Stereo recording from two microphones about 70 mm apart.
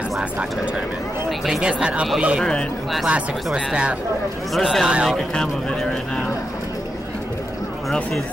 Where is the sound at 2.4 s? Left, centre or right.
Centre.